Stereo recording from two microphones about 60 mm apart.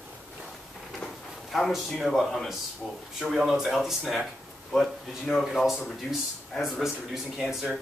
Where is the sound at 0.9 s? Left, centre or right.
Centre.